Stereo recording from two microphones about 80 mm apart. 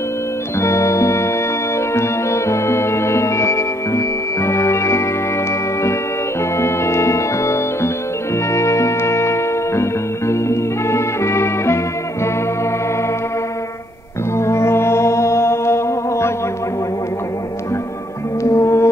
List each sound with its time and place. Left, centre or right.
0.6 s music: left
6.5 s music: left
14.3 s music: left
18.4 s music: left